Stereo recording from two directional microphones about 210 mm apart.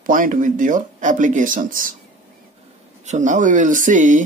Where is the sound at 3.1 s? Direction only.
35° right (ahead or behind).